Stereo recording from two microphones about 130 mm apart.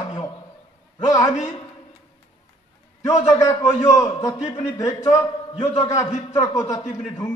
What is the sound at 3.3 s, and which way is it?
A man's voice, 20° left (ahead or behind).